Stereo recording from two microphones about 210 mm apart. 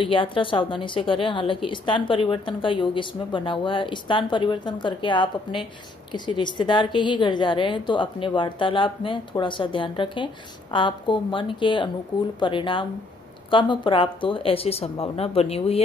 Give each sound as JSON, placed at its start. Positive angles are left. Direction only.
{"t": 0.0, "sound": "a woman's voice", "side_deg": 25}